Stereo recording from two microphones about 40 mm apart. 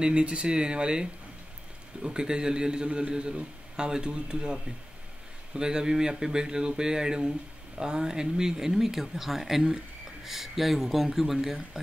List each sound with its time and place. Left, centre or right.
0.0 s speech: right; by 11.8 s centre